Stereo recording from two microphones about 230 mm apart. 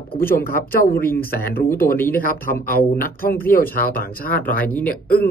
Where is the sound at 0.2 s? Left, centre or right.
Left.